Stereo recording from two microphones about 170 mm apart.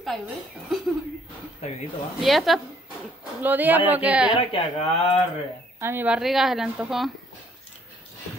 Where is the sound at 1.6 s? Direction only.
40° left (ahead or behind).